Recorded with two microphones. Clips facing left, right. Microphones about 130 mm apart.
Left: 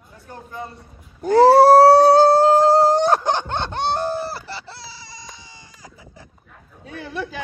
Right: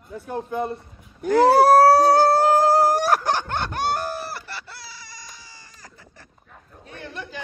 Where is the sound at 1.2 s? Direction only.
30° left (ahead or behind).